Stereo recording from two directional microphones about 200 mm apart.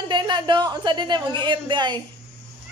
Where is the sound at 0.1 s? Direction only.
20° right (ahead or behind).